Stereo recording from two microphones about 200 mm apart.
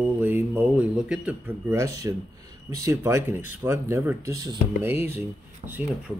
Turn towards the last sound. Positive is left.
turn(degrees=-10)  # may be behind; listen again after turning